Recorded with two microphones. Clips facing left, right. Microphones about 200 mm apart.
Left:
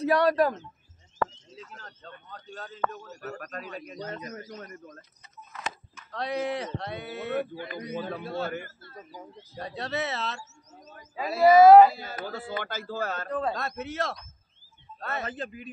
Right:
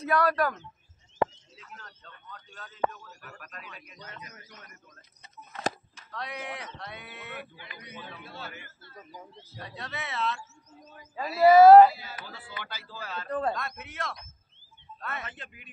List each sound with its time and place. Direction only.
0.0 s speech: 30° left (ahead or behind)
1.2 s a sound: 20° right (ahead or behind)
1.6 s speech: 30° left (ahead or behind)
6.1 s speech: 35° left (ahead or behind)
12.0 s speech: 45° left (ahead or behind)
13.3 s a man's voice: centre (ahead or behind)
13.6 s speech: 40° left (ahead or behind)